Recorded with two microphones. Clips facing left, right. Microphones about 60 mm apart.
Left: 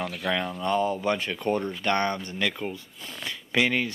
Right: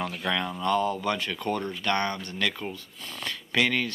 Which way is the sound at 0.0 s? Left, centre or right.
Centre.